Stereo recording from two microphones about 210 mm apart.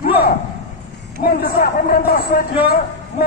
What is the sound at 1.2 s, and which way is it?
A man's voice, 45° left (ahead or behind).